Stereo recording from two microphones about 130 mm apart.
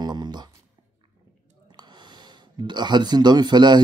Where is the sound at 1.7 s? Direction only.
35° right (ahead or behind).